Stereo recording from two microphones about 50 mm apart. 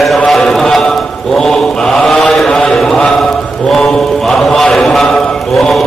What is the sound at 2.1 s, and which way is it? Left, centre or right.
Mantra, centre.